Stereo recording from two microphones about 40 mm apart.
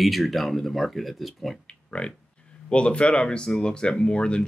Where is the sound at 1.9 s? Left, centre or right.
Left.